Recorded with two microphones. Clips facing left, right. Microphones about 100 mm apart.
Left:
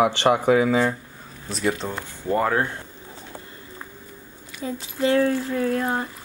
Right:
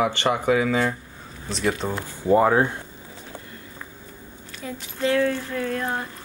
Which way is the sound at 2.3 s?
15° right (ahead or behind).